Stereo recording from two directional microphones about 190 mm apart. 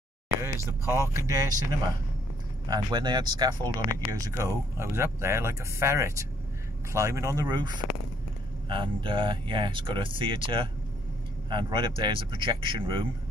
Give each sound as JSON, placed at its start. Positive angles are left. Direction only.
{"t": 0.7, "sound": "speech", "side_deg": -15}